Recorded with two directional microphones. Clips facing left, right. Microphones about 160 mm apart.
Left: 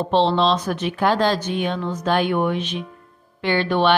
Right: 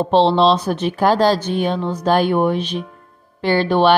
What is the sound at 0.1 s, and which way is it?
A woman's voice, 35° right (ahead or behind).